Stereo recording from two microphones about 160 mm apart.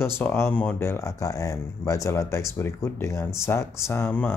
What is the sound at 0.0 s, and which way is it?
Speech, 15° left (ahead or behind).